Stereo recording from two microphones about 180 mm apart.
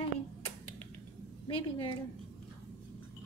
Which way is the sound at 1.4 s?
30° left (ahead or behind).